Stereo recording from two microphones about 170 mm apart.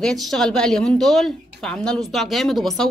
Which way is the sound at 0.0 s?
Centre (ahead or behind).